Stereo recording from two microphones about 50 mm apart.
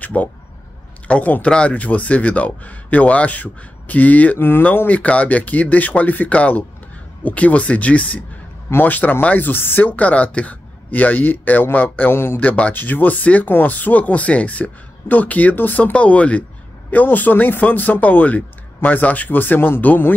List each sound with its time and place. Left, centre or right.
0.0 s a sound: left
1.0 s speech: left
4.4 s speech: left
12.1 s speech: left
12.4 s speech: left